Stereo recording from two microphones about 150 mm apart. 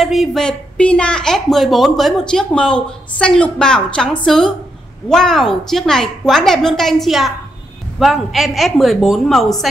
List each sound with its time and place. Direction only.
0.0 s speech: centre (ahead or behind)